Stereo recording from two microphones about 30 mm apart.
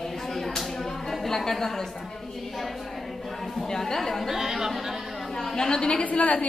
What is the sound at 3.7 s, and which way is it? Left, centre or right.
Speech, centre.